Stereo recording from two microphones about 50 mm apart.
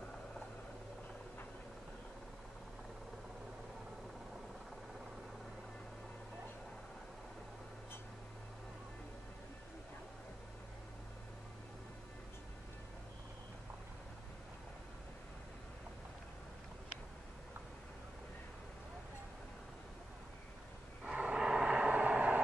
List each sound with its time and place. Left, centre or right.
21.0 s vehicle: centre